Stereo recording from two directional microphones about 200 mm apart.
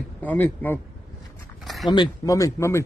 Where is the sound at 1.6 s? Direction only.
Centre (ahead or behind).